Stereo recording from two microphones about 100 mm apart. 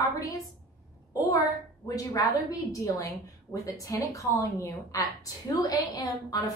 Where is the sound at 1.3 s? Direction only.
35° left (ahead or behind).